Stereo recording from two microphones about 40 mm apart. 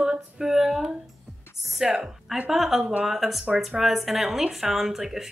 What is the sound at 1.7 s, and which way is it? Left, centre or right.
Music, centre.